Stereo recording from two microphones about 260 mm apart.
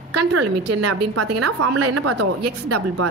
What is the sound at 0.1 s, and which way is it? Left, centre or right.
A woman's voice, right.